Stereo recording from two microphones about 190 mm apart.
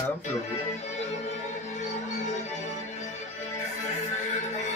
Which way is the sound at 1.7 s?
40° left (ahead or behind).